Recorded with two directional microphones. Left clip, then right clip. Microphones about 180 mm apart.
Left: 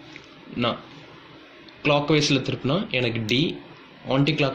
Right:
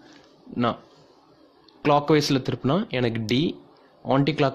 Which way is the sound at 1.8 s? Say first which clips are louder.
Right 1 dB; 45° right (ahead or behind).